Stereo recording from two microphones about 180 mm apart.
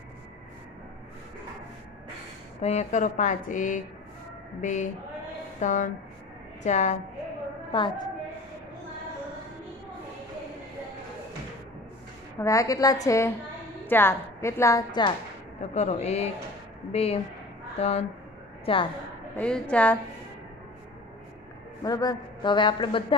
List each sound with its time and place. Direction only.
2.6 s a man's voice: 40° left (ahead or behind)
7.7 s a man's voice: 25° left (ahead or behind)
12.4 s a woman's voice: 15° left (ahead or behind)
15.6 s a man's voice: 40° left (ahead or behind)
19.3 s a woman's voice: 5° left (ahead or behind)
21.8 s a man's voice: 20° left (ahead or behind)